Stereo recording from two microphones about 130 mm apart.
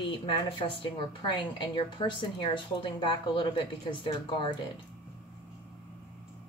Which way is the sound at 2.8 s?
40° left (ahead or behind).